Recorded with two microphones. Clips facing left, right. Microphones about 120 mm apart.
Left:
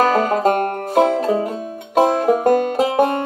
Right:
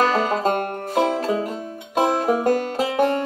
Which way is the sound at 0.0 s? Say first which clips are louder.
Left 4 dB; 45° left (ahead or behind).